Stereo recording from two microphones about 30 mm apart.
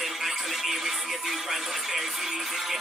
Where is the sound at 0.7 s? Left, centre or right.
Centre.